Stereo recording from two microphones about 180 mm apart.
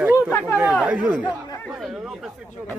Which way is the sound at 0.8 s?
10° right (ahead or behind).